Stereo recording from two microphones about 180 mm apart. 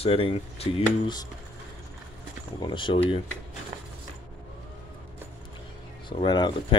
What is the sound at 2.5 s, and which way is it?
Speech, 25° left (ahead or behind).